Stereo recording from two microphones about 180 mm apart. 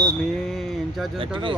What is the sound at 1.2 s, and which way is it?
Speech, 30° right (ahead or behind).